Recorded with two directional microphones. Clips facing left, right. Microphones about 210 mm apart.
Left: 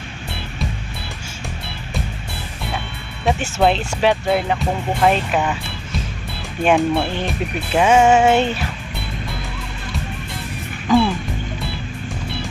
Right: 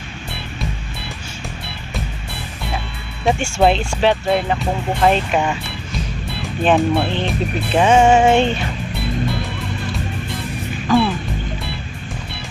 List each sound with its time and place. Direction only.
3.3 s speech: centre (ahead or behind)
6.6 s speech: centre (ahead or behind)
10.9 s speech: 15° left (ahead or behind)